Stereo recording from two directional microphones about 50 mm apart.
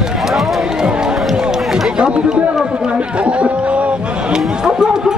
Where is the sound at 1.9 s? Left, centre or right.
Centre.